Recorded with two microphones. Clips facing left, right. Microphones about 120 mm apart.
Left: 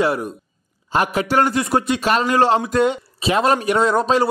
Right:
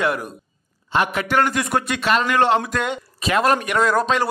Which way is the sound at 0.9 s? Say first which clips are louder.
Left 2 dB; 40° left (ahead or behind).